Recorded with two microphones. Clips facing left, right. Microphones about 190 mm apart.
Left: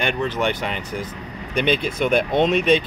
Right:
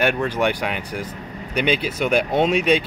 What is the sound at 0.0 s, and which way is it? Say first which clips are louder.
Speech: right 2 dB; 5° right (ahead or behind).